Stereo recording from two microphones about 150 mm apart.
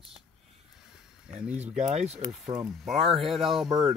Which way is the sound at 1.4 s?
10° right (ahead or behind).